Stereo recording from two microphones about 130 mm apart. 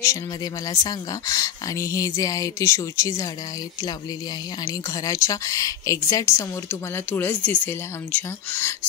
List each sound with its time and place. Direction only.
0.7 s a woman's voice: 25° left (ahead or behind)
4.6 s a woman's voice: 25° left (ahead or behind)